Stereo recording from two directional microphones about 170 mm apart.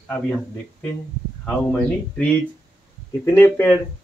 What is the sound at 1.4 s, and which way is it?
Speech, 10° left (ahead or behind).